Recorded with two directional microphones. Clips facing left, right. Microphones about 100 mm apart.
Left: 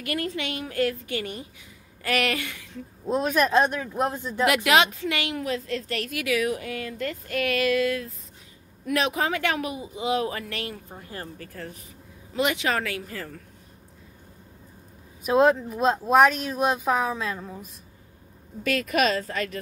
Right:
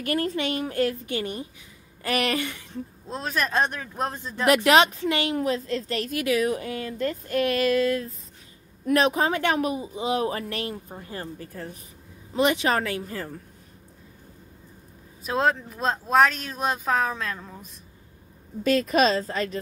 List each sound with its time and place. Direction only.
0.0 s a woman's voice: 35° right (ahead or behind)
3.1 s speech: 10° left (ahead or behind)
4.5 s a woman's voice: 35° right (ahead or behind)
12.4 s a woman's voice: 35° right (ahead or behind)
15.2 s speech: 10° left (ahead or behind)
18.6 s a woman's voice: 30° right (ahead or behind)